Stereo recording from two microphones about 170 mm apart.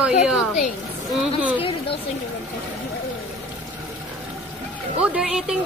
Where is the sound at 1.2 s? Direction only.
10° right (ahead or behind).